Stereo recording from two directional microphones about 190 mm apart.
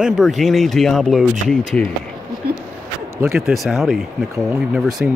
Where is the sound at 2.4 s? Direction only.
55° right (ahead or behind).